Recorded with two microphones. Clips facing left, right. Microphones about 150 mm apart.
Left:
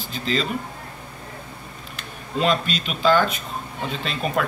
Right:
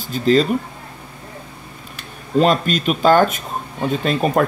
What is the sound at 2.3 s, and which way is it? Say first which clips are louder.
Speech: right 6 dB; 45° right (ahead or behind).